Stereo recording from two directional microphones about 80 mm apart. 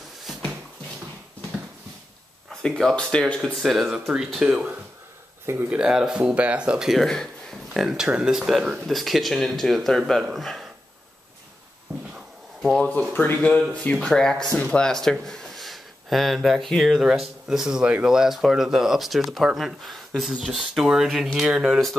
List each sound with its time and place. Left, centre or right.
2.6 s speech: centre
5.7 s speech: centre
12.6 s speech: centre
13.1 s speech: centre
13.9 s speech: centre